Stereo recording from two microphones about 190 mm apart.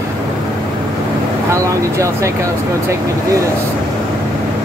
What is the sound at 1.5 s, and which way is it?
Speech, 15° right (ahead or behind).